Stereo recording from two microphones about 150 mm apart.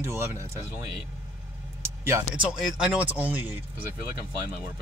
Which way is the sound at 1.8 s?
20° right (ahead or behind).